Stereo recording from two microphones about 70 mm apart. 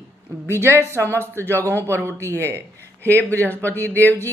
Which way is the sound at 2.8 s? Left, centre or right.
Left.